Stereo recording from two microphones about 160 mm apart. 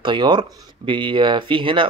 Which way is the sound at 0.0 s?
30° right (ahead or behind).